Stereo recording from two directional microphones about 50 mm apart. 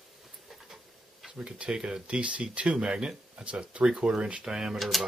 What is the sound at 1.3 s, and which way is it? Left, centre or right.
Speech, right.